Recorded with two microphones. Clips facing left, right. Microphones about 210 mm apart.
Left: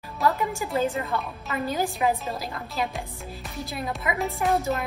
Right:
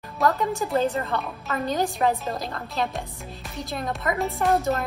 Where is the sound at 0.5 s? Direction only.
Centre (ahead or behind).